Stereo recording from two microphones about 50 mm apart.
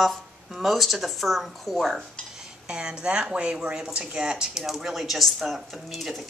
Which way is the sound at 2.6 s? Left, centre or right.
Centre.